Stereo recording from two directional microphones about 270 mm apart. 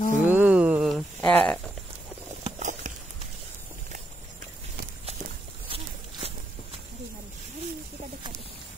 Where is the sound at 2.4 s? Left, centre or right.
Right.